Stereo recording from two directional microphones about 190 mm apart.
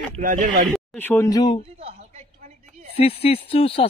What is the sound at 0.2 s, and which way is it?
Speech, 45° right (ahead or behind).